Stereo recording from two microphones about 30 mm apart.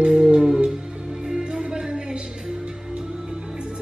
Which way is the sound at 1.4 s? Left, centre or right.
Right.